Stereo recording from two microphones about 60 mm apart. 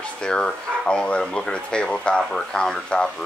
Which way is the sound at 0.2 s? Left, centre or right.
Centre.